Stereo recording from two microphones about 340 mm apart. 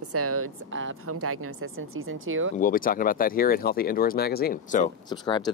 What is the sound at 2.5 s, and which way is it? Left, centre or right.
Speech, left.